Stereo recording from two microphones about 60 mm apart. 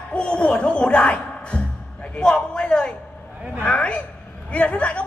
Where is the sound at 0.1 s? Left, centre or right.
Centre.